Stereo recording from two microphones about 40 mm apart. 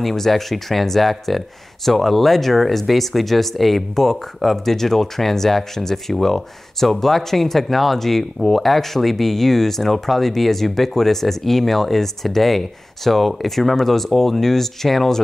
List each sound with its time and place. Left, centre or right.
0.0 s speech: centre